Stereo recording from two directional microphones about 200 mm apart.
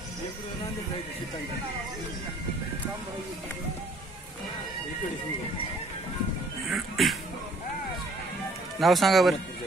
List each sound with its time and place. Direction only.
6.7 s music: centre (ahead or behind)
8.7 s speech: centre (ahead or behind)